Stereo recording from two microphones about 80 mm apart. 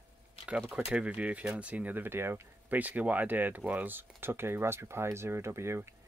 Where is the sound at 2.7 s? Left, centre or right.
Centre.